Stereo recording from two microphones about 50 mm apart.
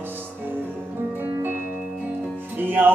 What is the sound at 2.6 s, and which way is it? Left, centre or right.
Music, right.